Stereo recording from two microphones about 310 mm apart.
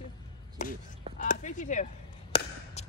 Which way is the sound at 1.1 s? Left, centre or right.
Left.